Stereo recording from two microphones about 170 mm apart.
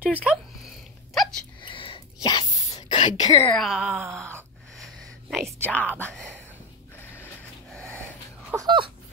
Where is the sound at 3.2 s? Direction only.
40° left (ahead or behind).